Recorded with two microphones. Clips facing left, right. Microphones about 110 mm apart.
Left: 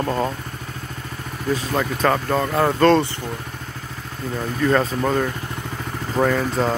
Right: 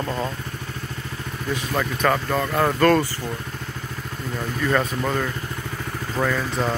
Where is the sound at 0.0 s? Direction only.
30° left (ahead or behind).